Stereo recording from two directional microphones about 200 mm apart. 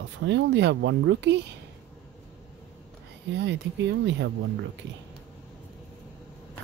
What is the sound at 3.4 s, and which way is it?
Speech, 60° right (ahead or behind).